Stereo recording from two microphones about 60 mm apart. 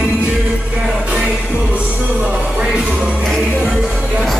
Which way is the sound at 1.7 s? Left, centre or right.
Centre.